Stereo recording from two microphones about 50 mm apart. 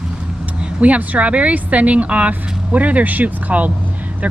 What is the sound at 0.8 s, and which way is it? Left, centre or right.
Speech, right.